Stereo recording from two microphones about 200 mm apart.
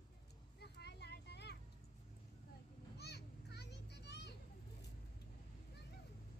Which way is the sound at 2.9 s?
55° left (ahead or behind).